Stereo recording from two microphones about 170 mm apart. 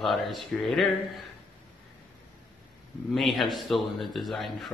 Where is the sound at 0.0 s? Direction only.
Centre (ahead or behind).